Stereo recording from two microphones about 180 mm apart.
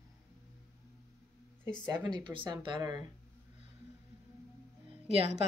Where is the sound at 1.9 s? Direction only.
20° right (ahead or behind).